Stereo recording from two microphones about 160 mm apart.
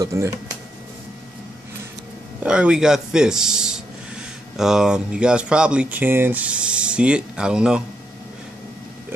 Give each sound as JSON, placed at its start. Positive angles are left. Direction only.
{"t": 0.0, "sound": "speech", "side_deg": -20}
{"t": 2.4, "sound": "speech", "side_deg": -5}